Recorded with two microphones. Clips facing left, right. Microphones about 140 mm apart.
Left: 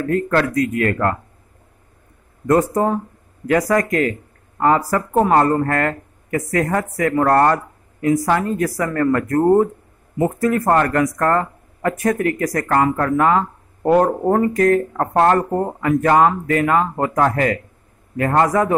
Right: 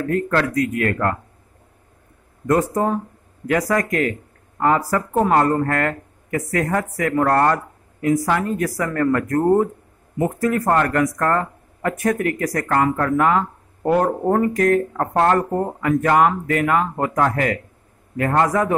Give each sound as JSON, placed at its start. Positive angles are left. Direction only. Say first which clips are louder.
{"t": 0.3, "sound": "speech", "louder": "left 2 dB", "side_deg": 35}
{"t": 2.4, "sound": "speech", "louder": "left 2 dB", "side_deg": 35}